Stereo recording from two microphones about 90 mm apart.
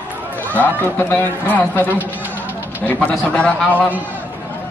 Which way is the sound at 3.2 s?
10° left (ahead or behind).